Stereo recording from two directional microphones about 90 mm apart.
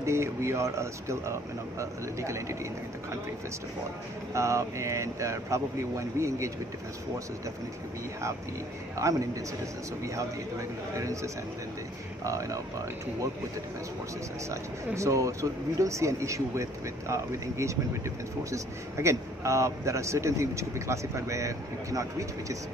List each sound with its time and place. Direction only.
0.0 s speech: 35° right (ahead or behind)
4.3 s speech: 35° right (ahead or behind)
8.9 s speech: 35° right (ahead or behind)
12.3 s speech: 35° right (ahead or behind)
14.5 s speech: 35° right (ahead or behind)